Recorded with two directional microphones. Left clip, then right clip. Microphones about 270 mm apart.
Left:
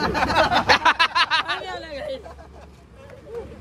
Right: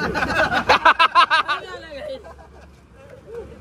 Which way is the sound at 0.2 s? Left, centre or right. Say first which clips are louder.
Left 1 dB; left.